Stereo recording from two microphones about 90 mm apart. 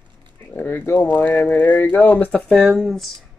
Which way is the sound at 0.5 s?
20° left (ahead or behind).